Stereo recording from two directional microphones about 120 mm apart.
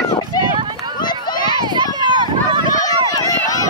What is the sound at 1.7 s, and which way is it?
Run, 35° right (ahead or behind).